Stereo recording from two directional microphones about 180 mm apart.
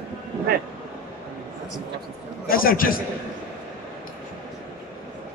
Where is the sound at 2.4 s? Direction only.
55° left (ahead or behind).